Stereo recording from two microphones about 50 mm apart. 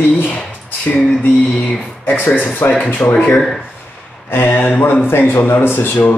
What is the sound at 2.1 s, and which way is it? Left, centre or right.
Speech, left.